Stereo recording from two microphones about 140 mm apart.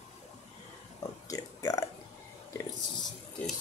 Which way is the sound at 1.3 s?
25° left (ahead or behind).